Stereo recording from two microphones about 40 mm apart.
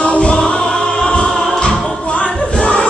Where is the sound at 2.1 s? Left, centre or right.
Left.